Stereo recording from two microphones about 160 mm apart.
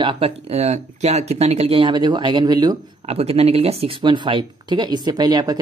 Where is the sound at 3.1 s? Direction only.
40° right (ahead or behind).